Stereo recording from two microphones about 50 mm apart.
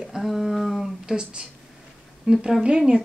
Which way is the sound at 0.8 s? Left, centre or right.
Centre.